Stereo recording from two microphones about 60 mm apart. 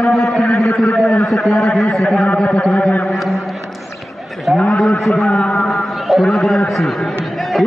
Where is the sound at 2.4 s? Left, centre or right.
Centre.